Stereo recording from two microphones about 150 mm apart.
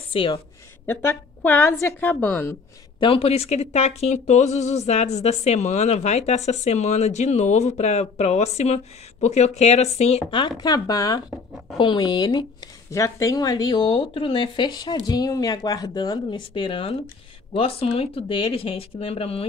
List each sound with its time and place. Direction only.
0.1 s speech: 40° left (ahead or behind)
0.8 s a woman's voice: 15° left (ahead or behind)
3.0 s speech: 40° left (ahead or behind)
10.6 s speech: 25° left (ahead or behind)